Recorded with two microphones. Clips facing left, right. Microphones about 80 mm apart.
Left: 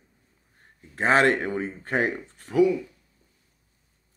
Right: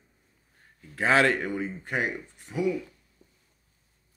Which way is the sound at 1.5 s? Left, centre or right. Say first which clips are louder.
Left 4 dB; left.